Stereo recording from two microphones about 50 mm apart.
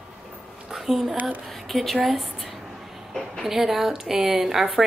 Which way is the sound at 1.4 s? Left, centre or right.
Centre.